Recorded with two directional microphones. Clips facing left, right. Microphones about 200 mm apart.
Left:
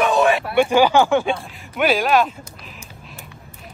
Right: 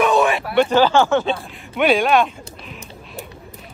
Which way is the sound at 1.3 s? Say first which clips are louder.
Right 2 dB; centre (ahead or behind).